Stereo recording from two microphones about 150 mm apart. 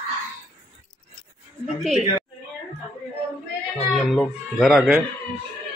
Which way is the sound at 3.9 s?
Centre (ahead or behind).